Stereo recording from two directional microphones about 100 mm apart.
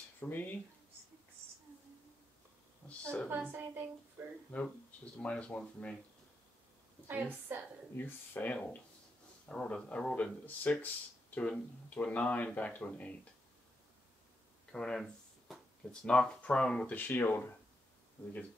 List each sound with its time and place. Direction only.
0.2 s speech: 20° left (ahead or behind)
2.8 s a sound: 5° left (ahead or behind)
3.3 s a woman's voice: 20° right (ahead or behind)
5.1 s speech: 10° left (ahead or behind)
7.1 s a woman's voice: 20° right (ahead or behind)
7.9 s speech: 20° left (ahead or behind)
14.7 s speech: 5° left (ahead or behind)
17.1 s speech: 20° left (ahead or behind)